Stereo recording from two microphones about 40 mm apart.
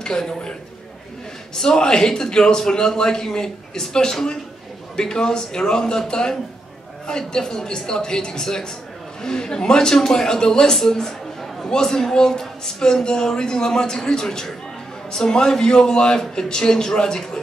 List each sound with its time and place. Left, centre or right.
0.0 s a man's voice: centre
1.6 s a man's voice: centre